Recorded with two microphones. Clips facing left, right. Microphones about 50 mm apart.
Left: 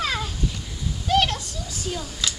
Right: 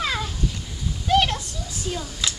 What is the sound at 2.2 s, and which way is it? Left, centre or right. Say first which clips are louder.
Clapping: even; right.